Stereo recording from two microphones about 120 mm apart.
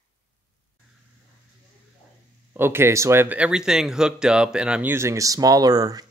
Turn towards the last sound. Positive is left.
turn(degrees=-30)  # may be behind; listen again after turning